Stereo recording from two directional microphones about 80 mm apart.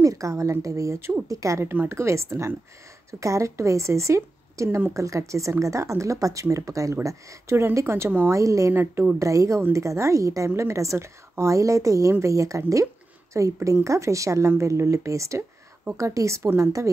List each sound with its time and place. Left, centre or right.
0.0 s a woman's voice: right
1.7 s a woman's voice: right
4.6 s speech: right
4.9 s a woman's voice: right
8.3 s a woman's voice: right